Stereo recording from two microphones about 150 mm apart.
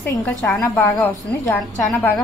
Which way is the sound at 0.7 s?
25° left (ahead or behind).